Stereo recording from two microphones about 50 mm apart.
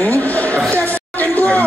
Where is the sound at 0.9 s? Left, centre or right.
Left.